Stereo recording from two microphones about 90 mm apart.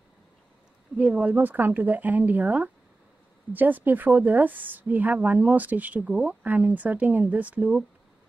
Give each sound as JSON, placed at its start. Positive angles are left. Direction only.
{"t": 0.9, "sound": "a woman's voice", "side_deg": -15}